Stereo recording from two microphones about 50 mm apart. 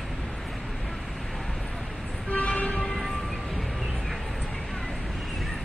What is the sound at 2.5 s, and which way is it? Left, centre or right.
Vehicle, left.